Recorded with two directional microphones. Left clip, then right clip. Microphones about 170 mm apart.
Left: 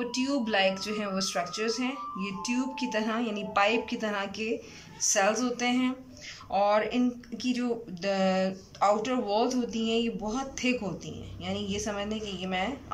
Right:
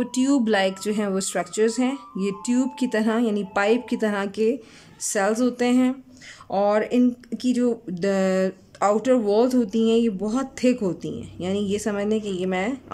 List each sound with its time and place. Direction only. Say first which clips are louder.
0.0 s speech: right 8 dB; 45° right (ahead or behind)